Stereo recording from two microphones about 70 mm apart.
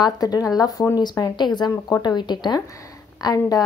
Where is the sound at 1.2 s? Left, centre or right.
Left.